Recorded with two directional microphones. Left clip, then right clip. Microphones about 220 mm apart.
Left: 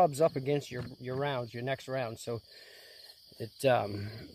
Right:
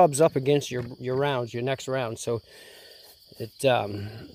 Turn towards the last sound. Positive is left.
turn(degrees=-15)  # may be behind; listen again after turning